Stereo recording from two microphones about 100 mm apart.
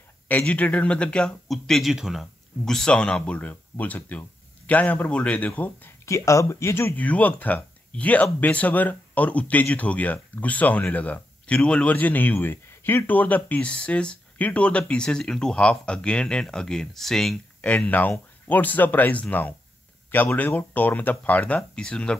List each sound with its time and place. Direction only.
0.3 s speech: 15° left (ahead or behind)
6.0 s speech: 30° left (ahead or behind); by 17.4 s 5° left (ahead or behind)
17.6 s speech: 15° left (ahead or behind)